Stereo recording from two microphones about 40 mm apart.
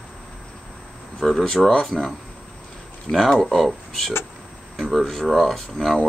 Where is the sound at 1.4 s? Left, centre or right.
Left.